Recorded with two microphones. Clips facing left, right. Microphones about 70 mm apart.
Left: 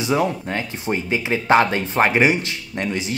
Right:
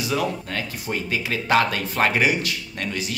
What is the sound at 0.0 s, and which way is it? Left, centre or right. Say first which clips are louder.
Speech: left 4 dB; left.